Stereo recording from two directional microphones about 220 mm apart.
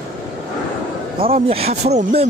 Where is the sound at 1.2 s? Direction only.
25° right (ahead or behind).